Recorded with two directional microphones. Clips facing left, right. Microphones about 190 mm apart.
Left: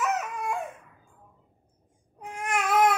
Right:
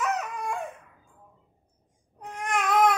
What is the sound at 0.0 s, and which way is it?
Crying, 5° left (ahead or behind).